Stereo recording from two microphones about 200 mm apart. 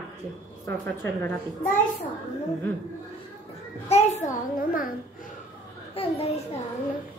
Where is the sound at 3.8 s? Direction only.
30° left (ahead or behind).